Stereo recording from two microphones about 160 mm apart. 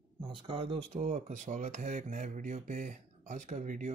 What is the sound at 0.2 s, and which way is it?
Speech, 30° right (ahead or behind).